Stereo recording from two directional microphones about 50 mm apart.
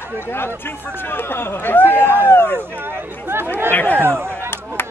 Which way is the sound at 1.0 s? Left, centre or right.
Left.